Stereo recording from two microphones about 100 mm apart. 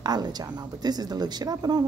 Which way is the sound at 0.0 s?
45° right (ahead or behind).